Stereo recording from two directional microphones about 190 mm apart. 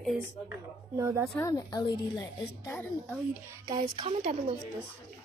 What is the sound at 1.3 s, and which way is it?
A woman's voice, 20° left (ahead or behind).